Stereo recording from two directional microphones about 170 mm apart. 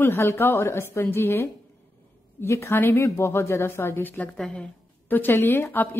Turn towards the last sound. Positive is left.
turn(degrees=10)  # may be behind; listen again after turning